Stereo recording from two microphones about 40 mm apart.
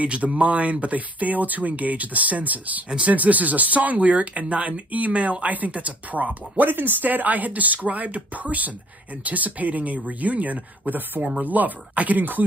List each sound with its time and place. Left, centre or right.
0.0 s speech: right